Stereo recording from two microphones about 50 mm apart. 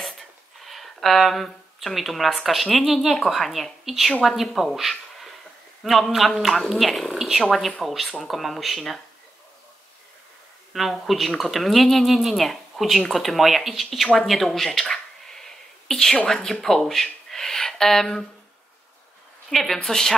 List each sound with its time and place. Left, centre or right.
0.0 s a woman's voice: centre
10.7 s speech: centre
14.2 s a sound: centre
16.4 s speech: centre
19.5 s a woman's voice: centre